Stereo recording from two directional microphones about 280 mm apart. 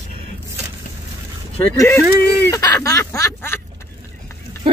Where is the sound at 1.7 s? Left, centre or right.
Centre.